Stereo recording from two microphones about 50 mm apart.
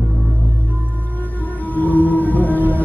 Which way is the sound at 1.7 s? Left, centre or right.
Left.